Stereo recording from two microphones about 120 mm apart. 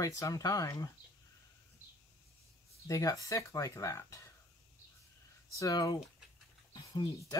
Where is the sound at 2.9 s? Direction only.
30° left (ahead or behind).